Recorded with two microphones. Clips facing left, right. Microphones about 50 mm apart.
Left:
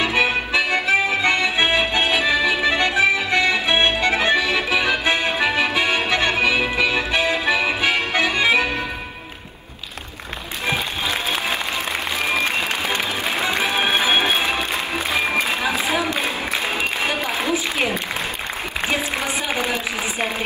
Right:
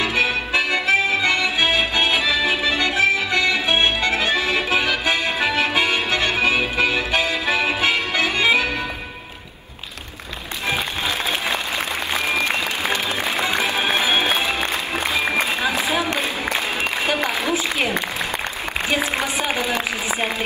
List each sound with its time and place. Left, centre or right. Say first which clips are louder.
0.0 s music: left 1 dB; left
2.6 s accordion: left 1 dB; left
4.5 s accordion: even; right
4.7 s accordion: left 2 dB; left
5.9 s music: left 1 dB; left
13.6 s music: left 1 dB; left